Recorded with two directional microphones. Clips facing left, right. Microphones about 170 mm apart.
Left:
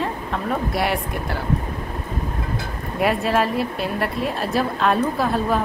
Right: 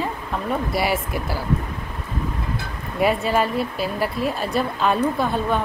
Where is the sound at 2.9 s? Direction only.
Centre (ahead or behind).